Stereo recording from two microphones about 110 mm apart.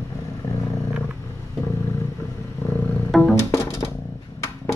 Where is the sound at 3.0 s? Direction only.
5° left (ahead or behind).